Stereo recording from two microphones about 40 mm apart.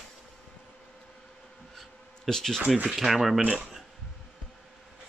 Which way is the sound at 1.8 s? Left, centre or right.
Centre.